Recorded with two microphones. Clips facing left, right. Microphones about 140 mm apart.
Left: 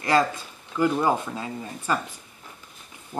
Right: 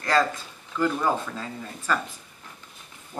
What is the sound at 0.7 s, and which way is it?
Speech, 15° left (ahead or behind).